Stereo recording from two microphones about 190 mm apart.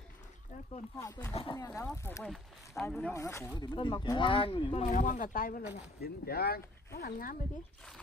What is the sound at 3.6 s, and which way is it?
Speech, 25° left (ahead or behind).